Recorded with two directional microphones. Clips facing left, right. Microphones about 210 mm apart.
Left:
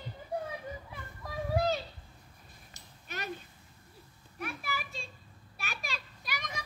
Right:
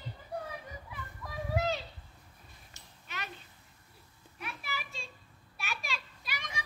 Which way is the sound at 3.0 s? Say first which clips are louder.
Left 4 dB; 40° left (ahead or behind).